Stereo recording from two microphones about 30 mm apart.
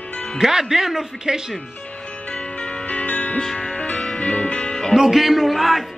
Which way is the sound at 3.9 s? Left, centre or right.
Left.